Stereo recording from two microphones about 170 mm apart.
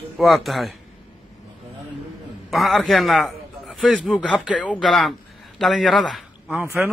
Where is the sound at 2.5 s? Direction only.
Centre (ahead or behind).